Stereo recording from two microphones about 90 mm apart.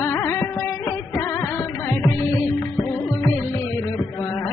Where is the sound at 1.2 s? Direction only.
30° left (ahead or behind).